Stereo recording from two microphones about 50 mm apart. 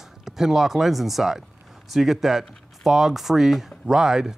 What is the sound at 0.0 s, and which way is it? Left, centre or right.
Speech, centre.